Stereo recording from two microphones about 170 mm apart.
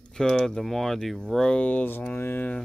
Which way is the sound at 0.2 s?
5° left (ahead or behind).